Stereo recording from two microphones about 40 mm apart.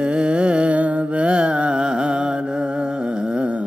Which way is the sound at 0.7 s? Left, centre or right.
Right.